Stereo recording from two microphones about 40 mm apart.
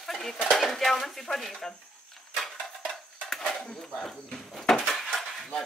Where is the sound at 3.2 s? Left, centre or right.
Centre.